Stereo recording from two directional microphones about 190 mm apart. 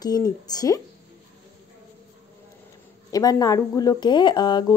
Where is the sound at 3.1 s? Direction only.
20° left (ahead or behind).